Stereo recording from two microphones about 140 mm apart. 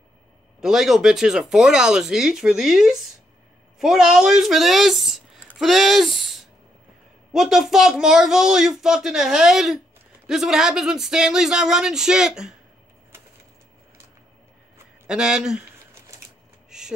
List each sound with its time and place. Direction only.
0.6 s speech: 5° right (ahead or behind)
15.0 s speech: 5° right (ahead or behind)
15.6 s a sound: 20° right (ahead or behind)